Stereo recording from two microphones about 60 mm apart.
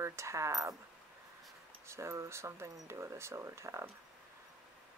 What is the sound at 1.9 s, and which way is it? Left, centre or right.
Speech, right.